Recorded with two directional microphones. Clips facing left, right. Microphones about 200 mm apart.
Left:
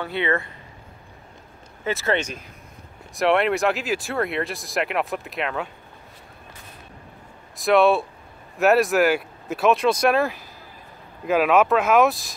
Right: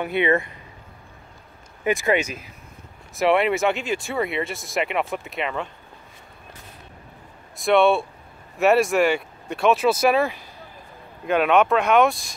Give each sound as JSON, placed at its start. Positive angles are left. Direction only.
{"t": 0.0, "sound": "speech", "side_deg": -20}
{"t": 1.9, "sound": "speech", "side_deg": -15}
{"t": 7.5, "sound": "speech", "side_deg": 0}